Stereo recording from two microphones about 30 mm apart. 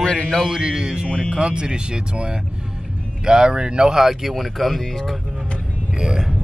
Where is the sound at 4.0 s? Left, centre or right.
Centre.